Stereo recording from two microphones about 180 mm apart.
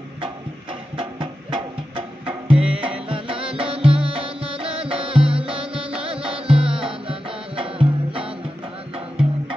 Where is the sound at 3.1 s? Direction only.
30° right (ahead or behind).